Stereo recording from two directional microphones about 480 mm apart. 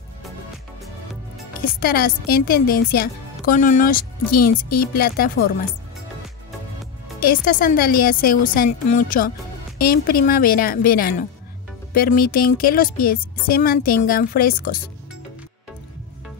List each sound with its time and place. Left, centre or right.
1.6 s speech: centre
7.2 s a woman's voice: centre